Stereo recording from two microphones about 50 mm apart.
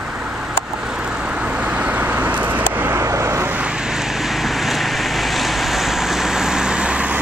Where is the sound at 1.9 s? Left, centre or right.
Right.